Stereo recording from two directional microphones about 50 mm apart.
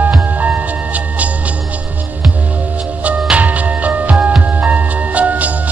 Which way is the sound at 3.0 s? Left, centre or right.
Right.